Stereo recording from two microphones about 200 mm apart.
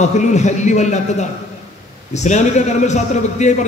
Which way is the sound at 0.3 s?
35° left (ahead or behind).